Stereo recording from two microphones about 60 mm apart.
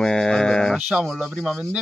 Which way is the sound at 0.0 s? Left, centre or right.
Centre.